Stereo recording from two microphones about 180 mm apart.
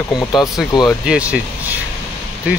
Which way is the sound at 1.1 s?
5° right (ahead or behind).